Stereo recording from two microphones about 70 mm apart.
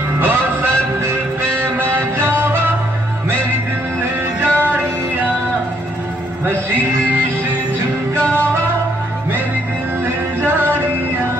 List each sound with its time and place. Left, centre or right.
0.2 s music: right
4.0 s music: right
6.4 s music: right
10.0 s music: right